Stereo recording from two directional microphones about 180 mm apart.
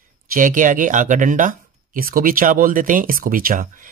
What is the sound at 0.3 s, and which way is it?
Speech, 45° right (ahead or behind).